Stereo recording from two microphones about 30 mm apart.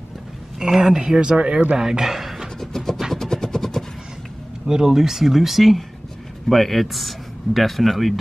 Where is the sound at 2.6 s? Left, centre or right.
Centre.